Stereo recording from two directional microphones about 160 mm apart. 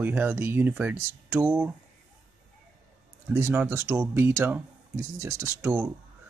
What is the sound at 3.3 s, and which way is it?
Speech, 15° right (ahead or behind).